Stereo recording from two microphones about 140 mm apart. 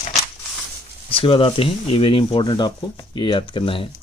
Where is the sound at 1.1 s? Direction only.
40° left (ahead or behind).